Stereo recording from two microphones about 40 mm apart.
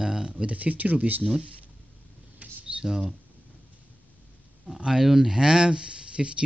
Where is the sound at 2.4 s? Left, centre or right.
Right.